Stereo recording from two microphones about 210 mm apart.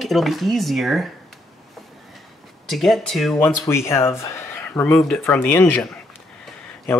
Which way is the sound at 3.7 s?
10° left (ahead or behind).